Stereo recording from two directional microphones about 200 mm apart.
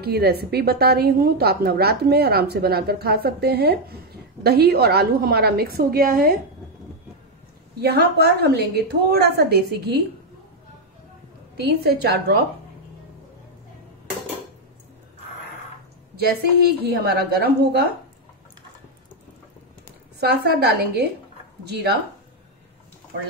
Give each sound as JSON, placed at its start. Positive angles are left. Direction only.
{"t": 0.0, "sound": "a woman's voice", "side_deg": -50}
{"t": 7.8, "sound": "a woman's voice", "side_deg": -50}
{"t": 11.5, "sound": "a woman's voice", "side_deg": -55}
{"t": 16.2, "sound": "a woman's voice", "side_deg": -50}
{"t": 20.2, "sound": "a woman's voice", "side_deg": -55}